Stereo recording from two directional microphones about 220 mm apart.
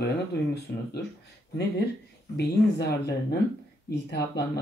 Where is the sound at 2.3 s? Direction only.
50° left (ahead or behind).